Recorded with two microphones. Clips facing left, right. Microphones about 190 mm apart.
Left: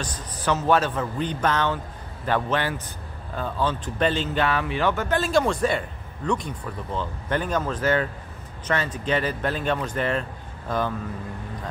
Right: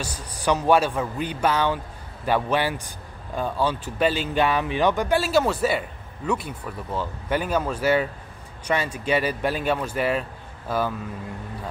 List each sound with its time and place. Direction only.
0.0 s speech: 10° right (ahead or behind)